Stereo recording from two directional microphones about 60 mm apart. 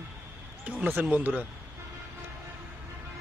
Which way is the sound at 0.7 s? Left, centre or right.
Right.